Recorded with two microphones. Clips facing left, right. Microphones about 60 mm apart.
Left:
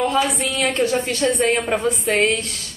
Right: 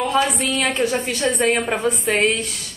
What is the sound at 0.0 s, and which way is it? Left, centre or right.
A woman's voice, centre.